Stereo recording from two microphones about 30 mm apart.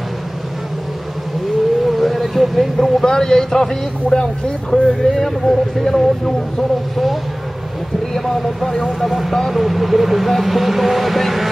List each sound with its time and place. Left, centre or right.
1.9 s a sound: centre
3.1 s speech: left
8.1 s speech: centre
9.5 s speech: centre